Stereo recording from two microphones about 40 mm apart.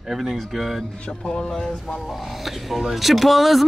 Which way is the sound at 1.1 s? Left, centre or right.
Left.